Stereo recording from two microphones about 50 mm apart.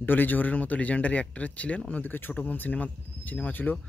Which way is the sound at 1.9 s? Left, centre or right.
Left.